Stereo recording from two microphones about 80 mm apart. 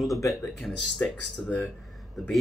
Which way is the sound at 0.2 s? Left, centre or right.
Left.